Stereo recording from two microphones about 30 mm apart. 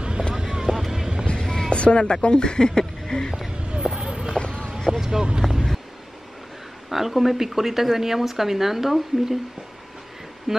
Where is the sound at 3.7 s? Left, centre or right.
Right.